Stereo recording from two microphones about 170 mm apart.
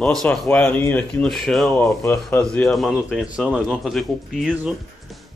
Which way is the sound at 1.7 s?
15° left (ahead or behind).